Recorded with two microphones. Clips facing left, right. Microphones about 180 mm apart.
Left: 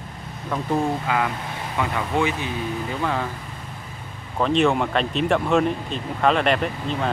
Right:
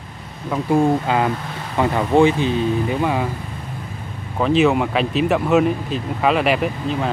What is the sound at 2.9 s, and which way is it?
Speech, 15° right (ahead or behind).